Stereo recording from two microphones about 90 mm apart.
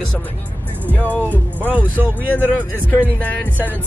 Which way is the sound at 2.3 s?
20° left (ahead or behind).